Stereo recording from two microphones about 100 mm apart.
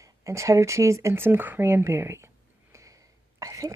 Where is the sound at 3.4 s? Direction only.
35° right (ahead or behind).